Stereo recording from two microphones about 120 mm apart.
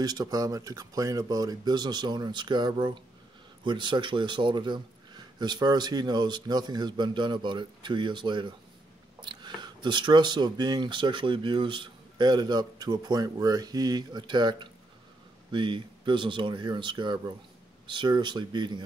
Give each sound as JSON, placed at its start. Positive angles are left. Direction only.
{"t": 0.0, "sound": "speech", "side_deg": -30}